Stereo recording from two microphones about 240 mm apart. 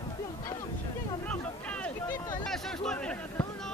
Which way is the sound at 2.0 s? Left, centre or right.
Centre.